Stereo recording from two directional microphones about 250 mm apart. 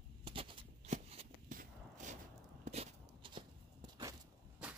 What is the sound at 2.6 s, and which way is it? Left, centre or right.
Walk, right.